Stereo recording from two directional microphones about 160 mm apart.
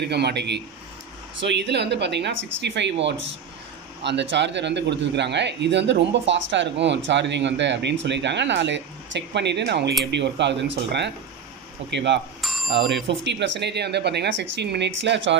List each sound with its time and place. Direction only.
0.0 s speech: 90° right
4.0 s speech: 90° right
12.4 s bicycle bell: centre (ahead or behind)
13.2 s speech: 90° right